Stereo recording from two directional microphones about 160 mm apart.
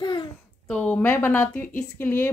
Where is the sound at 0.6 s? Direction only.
10° left (ahead or behind).